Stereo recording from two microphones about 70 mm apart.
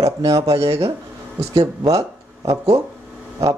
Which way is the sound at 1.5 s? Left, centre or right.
Right.